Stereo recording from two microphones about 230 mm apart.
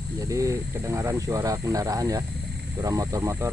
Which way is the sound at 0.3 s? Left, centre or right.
Centre.